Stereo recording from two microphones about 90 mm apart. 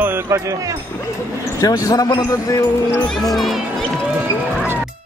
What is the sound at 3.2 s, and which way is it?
Speech, centre (ahead or behind).